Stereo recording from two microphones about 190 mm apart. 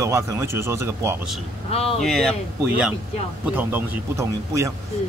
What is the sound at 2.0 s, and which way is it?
A man's voice, centre (ahead or behind).